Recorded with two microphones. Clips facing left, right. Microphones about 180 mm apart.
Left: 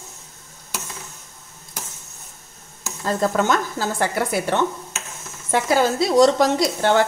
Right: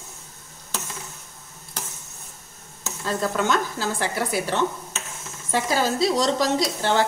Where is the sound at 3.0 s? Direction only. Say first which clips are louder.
Left 4 dB; 45° left (ahead or behind).